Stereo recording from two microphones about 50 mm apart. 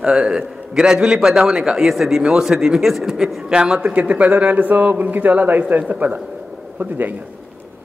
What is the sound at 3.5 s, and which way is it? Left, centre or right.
Speech, centre.